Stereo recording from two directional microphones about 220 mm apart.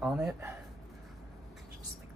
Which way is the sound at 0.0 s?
5° right (ahead or behind).